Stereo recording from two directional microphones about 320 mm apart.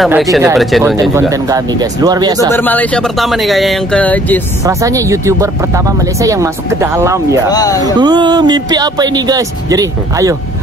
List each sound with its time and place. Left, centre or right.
0.0 s speech: centre
2.5 s speech: centre
4.6 s speech: centre
7.4 s speech: centre
8.0 s speech: centre